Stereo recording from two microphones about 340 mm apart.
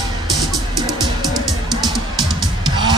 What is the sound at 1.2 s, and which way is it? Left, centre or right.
Music, centre.